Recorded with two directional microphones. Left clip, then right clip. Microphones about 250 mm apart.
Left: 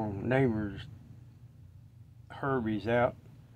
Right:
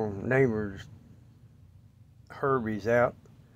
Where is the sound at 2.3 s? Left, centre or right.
Right.